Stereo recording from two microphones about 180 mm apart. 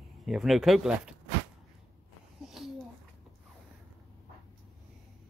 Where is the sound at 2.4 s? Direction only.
Centre (ahead or behind).